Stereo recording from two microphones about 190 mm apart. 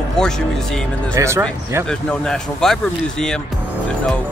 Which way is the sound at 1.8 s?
5° left (ahead or behind).